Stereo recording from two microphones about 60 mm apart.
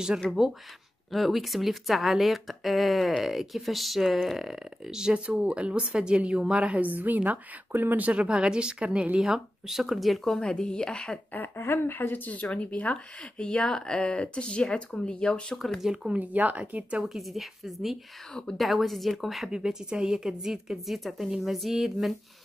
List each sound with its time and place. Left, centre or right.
0.3 s speech: centre; by 8.1 s right
8.1 s a woman's voice: centre
9.3 s speech: centre
11.3 s speech: left; by 15.4 s centre
15.5 s speech: centre
15.9 s a woman's voice: centre
16.2 s speech: right
17.0 s speech: centre
19.5 s a woman's voice: centre